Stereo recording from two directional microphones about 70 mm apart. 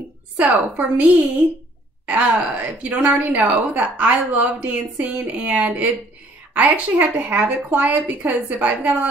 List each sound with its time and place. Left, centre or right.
0.4 s a woman's voice: centre